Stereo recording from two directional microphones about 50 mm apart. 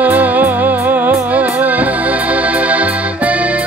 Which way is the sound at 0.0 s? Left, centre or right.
Right.